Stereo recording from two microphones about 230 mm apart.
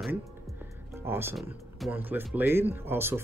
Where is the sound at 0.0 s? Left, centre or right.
Centre.